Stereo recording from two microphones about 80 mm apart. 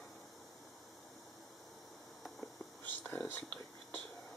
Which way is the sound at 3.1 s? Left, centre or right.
Left.